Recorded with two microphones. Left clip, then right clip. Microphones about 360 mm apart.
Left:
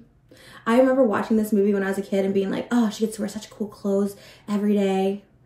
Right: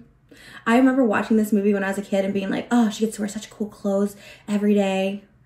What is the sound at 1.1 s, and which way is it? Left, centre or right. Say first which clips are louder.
Speech: right 1 dB; centre.